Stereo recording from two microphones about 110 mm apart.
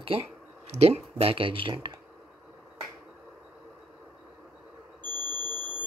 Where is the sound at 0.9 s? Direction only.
60° right (ahead or behind); by 2.0 s 45° right (ahead or behind).